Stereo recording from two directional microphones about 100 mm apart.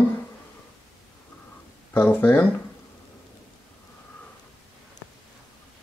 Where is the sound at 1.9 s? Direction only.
20° left (ahead or behind).